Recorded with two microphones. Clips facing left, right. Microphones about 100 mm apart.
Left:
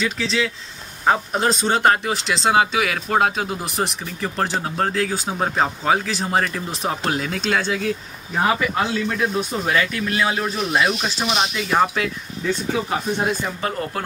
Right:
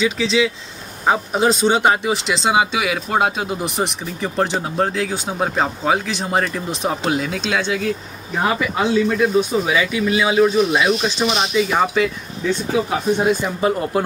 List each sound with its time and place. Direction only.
0.0 s speech: 5° right (ahead or behind)